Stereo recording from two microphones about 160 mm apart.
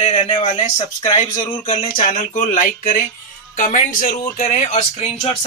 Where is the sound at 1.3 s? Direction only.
35° left (ahead or behind).